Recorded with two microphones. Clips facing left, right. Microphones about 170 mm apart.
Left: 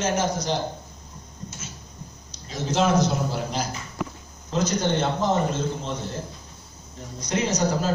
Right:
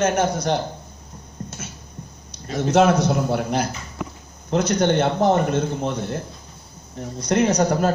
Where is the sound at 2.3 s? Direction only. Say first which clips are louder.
Right 7 dB; 60° right (ahead or behind).